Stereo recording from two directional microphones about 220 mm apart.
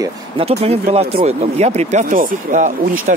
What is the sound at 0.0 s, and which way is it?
Speech, 25° right (ahead or behind).